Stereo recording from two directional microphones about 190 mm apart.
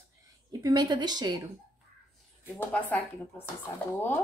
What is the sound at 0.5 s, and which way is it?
A woman's voice, 20° right (ahead or behind).